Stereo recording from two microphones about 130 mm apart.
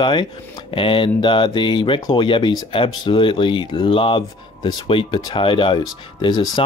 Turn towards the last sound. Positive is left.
turn(degrees=35)  # may be behind; listen again after turning